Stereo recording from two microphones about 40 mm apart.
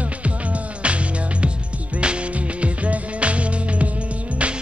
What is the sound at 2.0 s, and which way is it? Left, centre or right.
Music, right.